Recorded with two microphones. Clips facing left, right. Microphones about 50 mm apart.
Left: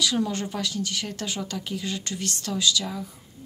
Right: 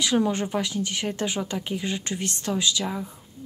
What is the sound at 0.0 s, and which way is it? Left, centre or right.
Speech, right.